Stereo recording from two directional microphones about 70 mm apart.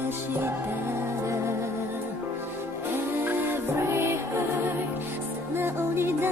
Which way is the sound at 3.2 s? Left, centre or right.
Right.